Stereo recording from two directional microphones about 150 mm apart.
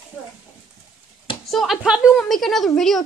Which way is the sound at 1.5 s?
Centre (ahead or behind).